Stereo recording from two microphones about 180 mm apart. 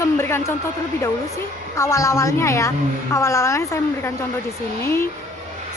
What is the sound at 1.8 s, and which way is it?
A woman's voice, 15° left (ahead or behind).